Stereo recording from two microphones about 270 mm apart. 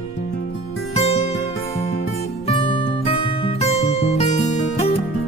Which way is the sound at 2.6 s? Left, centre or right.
Centre.